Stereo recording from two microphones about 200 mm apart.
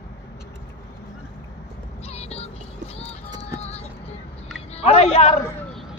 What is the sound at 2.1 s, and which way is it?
Music, 30° left (ahead or behind).